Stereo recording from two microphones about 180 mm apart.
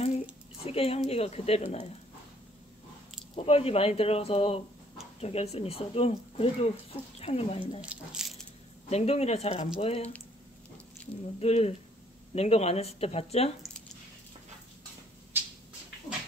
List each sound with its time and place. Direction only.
0.7 s speech: 35° left (ahead or behind)
3.3 s speech: 35° left (ahead or behind)
7.8 s a sound: 5° right (ahead or behind)
8.9 s speech: 35° left (ahead or behind)
11.3 s speech: 35° left (ahead or behind)
15.3 s a sound: 10° right (ahead or behind)